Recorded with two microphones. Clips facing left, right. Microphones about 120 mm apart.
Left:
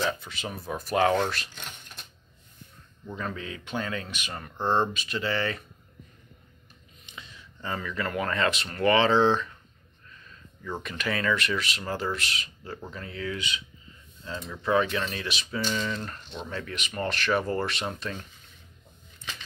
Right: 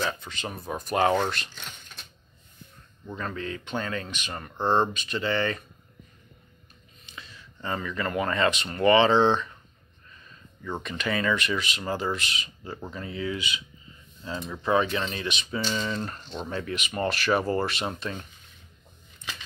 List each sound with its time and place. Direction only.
0.0 s speech: 5° left (ahead or behind)
3.2 s speech: 5° left (ahead or behind)
4.6 s speech: 30° right (ahead or behind)
4.9 s speech: 5° left (ahead or behind)
7.1 s a sound: 20° left (ahead or behind)
7.6 s speech: centre (ahead or behind)
15.8 s speech: 15° right (ahead or behind)
16.6 s speech: 5° right (ahead or behind)